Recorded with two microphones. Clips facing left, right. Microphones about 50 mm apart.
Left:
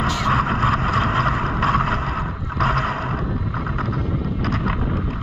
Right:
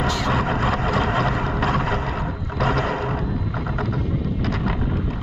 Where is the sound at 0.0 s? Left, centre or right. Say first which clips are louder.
Left 2 dB; left.